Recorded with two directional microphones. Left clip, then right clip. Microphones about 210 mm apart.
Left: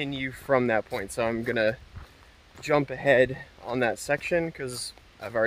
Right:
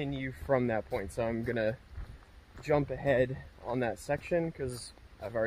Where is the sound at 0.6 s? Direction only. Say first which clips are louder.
Left 7 dB; 15° left (ahead or behind).